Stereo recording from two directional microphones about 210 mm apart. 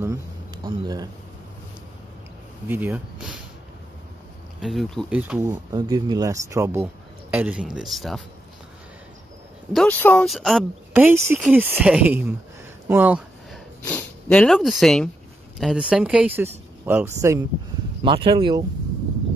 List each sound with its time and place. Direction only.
0.0 s speech: 15° right (ahead or behind)
2.7 s speech: 10° right (ahead or behind)
4.6 s speech: centre (ahead or behind)
5.5 s speech: 20° right (ahead or behind); by 8.2 s centre (ahead or behind)
9.7 s speech: 5° left (ahead or behind)
12.8 s a sound: 10° right (ahead or behind)
13.8 s speech: 5° left (ahead or behind); by 17.4 s 15° right (ahead or behind)
18.0 s speech: 25° right (ahead or behind)